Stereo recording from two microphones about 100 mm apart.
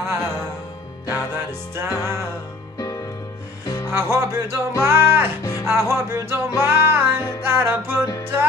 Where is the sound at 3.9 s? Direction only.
25° right (ahead or behind).